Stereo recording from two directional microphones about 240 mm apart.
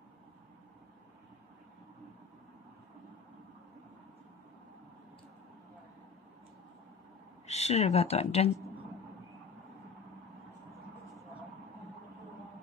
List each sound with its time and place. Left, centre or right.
7.4 s speech: left